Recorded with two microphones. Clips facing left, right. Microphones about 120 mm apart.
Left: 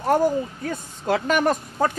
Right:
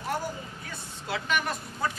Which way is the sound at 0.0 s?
45° left (ahead or behind).